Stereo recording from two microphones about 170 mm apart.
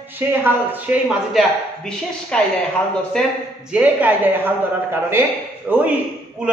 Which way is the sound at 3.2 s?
5° left (ahead or behind).